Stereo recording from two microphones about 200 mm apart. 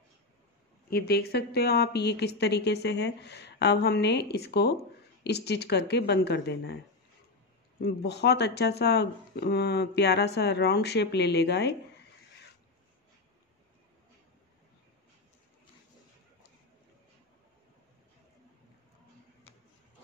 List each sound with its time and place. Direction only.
0.8 s speech: 55° left (ahead or behind)
7.8 s speech: 55° left (ahead or behind)